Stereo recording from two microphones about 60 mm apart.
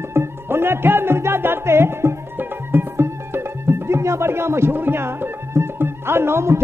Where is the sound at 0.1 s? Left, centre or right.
Right.